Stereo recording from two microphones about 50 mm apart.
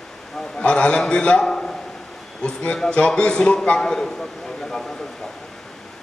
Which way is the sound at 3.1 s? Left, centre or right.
Centre.